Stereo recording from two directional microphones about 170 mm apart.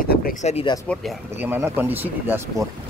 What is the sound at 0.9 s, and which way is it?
Speech, 5° left (ahead or behind).